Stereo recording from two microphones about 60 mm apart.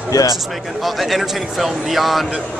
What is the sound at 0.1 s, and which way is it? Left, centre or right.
Speech, left.